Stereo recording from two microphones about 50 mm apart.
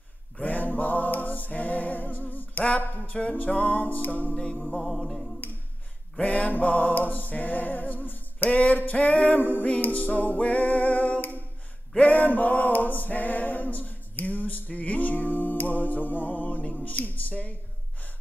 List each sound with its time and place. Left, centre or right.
0.4 s a capella: left
2.6 s a sound: left
3.0 s music: left
4.7 s music: centre
6.2 s music: left
12.0 s a sound: left